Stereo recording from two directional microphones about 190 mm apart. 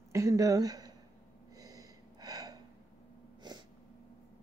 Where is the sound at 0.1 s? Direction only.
15° right (ahead or behind).